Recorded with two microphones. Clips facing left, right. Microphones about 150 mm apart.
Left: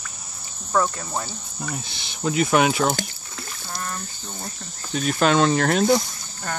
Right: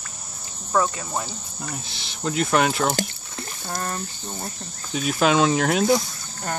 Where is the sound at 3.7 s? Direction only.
50° right (ahead or behind).